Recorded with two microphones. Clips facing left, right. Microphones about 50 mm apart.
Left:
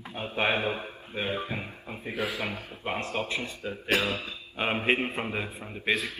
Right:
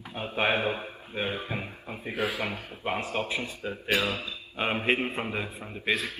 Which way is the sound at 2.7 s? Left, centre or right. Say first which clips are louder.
Right 2 dB; centre.